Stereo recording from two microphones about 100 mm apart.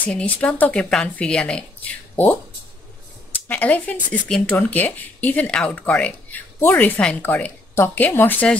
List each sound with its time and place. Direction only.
0.0 s speech: 15° left (ahead or behind)
3.4 s speech: 15° left (ahead or behind)